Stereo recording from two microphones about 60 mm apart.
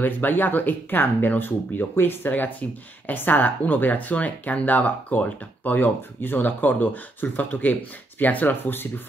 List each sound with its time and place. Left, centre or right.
0.0 s speech: left